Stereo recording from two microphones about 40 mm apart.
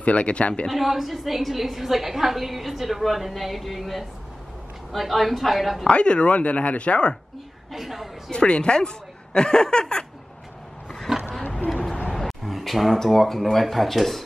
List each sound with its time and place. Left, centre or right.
0.0 s speech: left
0.7 s a woman's voice: centre
5.9 s speech: left
7.7 s a woman's voice: centre
8.3 s speech: left
11.1 s a sound: centre
11.7 s a sound: centre
12.1 s speech: centre